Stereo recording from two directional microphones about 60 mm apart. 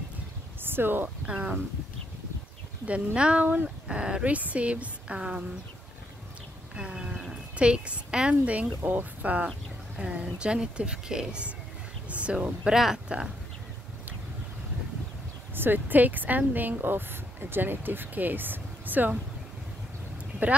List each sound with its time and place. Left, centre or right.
0.7 s speech: right
1.2 s speech: centre
2.8 s speech: right
6.7 s a sound: centre
7.5 s speech: centre
12.1 s a sound: right
12.6 s speech: centre
15.5 s speech: right